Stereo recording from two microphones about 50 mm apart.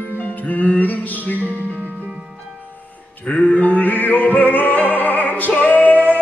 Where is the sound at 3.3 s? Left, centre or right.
Left.